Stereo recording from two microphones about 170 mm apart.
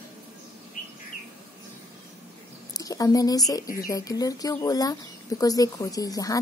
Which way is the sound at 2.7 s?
20° left (ahead or behind).